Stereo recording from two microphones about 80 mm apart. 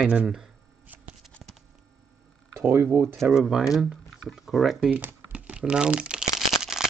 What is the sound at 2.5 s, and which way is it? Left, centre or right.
Speech, right.